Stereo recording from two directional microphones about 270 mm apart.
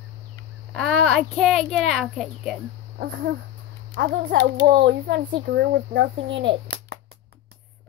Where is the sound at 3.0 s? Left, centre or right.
Right.